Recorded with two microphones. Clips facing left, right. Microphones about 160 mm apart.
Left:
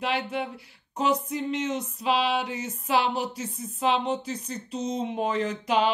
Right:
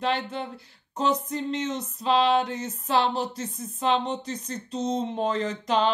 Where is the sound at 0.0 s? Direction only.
10° left (ahead or behind).